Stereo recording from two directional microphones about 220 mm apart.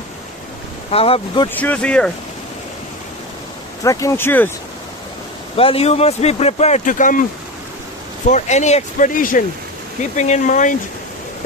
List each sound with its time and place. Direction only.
0.9 s speech: 25° left (ahead or behind)
1.5 s speech: 5° left (ahead or behind)
3.8 s speech: 15° left (ahead or behind)
5.6 s speech: 25° left (ahead or behind)
8.3 s speech: 30° left (ahead or behind)